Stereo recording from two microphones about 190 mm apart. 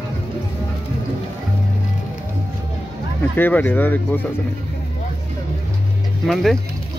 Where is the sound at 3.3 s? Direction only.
10° left (ahead or behind).